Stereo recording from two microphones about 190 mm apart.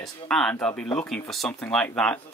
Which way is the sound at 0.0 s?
5° left (ahead or behind).